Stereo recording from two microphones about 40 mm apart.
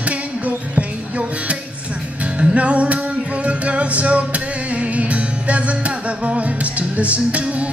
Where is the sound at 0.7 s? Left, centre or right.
Right.